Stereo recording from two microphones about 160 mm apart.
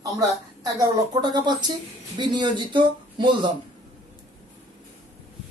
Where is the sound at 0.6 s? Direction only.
25° right (ahead or behind).